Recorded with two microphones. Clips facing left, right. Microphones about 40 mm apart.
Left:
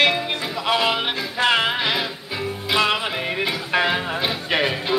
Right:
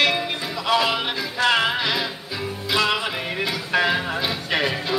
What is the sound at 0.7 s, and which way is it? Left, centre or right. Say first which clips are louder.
Music: even; centre.